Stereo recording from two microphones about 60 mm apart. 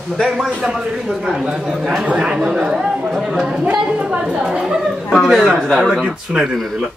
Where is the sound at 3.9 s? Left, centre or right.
Right.